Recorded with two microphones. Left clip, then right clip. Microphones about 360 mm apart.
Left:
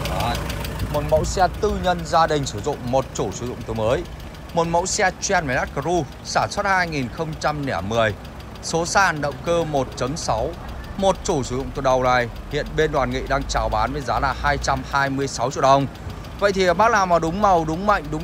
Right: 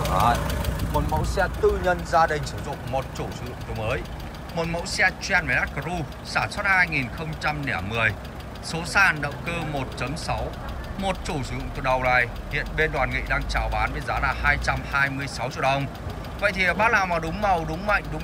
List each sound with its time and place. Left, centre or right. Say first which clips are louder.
0.0 s engine knocking: right 3 dB; centre
1.2 s speech: left 3 dB; left
4.9 s speech: left 2 dB; centre